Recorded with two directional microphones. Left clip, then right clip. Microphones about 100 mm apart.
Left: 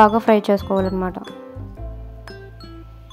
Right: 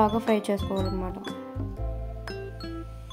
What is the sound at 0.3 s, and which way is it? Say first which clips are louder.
Speech: left 10 dB; 50° left (ahead or behind).